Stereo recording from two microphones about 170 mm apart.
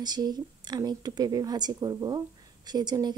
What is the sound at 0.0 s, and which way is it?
A woman's voice, 25° right (ahead or behind).